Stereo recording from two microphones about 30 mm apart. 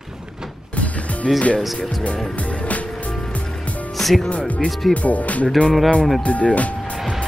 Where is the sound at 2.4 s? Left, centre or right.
Left.